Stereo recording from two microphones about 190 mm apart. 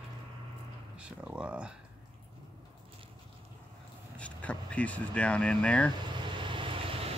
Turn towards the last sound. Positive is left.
turn(degrees=-30)  # may be behind; listen again after turning